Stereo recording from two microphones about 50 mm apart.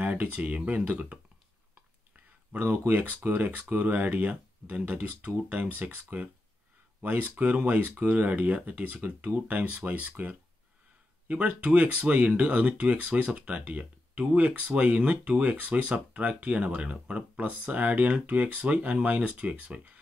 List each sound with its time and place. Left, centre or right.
0.0 s speech: right
2.6 s speech: right
3.4 s speech: right